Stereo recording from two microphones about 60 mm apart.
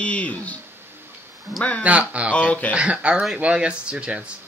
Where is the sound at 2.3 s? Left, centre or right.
Left.